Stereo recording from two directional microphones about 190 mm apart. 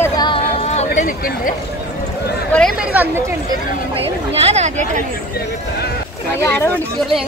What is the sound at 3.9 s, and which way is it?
Speech, 30° right (ahead or behind).